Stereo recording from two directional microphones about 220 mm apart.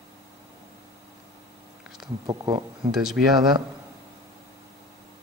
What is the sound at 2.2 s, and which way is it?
Speech, 20° right (ahead or behind).